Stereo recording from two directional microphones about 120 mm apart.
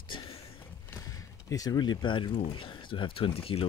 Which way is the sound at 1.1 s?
30° left (ahead or behind).